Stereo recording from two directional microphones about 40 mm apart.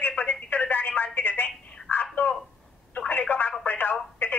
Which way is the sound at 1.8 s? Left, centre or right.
Left.